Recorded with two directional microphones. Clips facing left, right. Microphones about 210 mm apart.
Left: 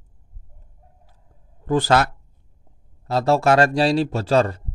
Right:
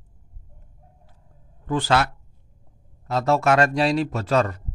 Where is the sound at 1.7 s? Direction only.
40° left (ahead or behind).